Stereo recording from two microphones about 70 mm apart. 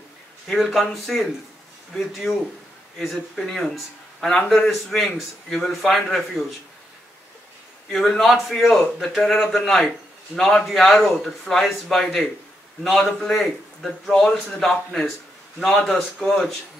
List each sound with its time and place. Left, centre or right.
0.5 s a man's voice: centre
3.4 s a man's voice: centre
7.9 s a man's voice: centre